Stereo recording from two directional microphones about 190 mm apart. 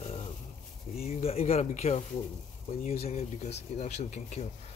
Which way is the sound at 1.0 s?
35° left (ahead or behind).